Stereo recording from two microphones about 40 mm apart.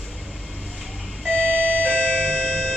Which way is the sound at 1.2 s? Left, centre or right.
Right.